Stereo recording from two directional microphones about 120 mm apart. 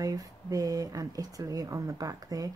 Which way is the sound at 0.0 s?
30° right (ahead or behind).